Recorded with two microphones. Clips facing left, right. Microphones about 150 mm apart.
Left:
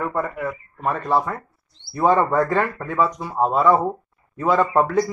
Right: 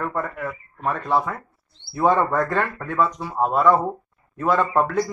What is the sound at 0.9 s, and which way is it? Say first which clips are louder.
Speech: left 1 dB; 10° left (ahead or behind).